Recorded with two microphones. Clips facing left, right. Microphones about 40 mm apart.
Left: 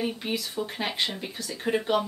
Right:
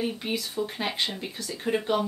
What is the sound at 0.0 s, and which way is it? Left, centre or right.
Speech, centre.